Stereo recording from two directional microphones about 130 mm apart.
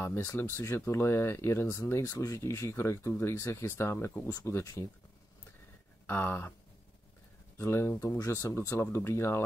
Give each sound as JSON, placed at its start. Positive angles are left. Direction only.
{"t": 0.0, "sound": "speech", "side_deg": 20}
{"t": 6.0, "sound": "a sound", "side_deg": 15}
{"t": 7.5, "sound": "speech", "side_deg": 20}